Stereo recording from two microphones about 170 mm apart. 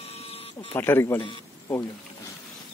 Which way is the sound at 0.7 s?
15° left (ahead or behind).